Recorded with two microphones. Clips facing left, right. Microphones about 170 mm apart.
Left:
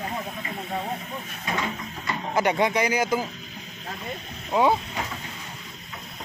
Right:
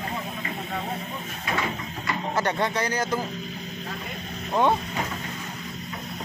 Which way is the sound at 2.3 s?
10° left (ahead or behind).